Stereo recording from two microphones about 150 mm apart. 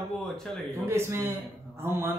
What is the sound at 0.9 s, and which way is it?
Speech, 20° right (ahead or behind).